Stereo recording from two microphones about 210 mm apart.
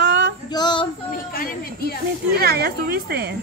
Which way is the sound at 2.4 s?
45° right (ahead or behind).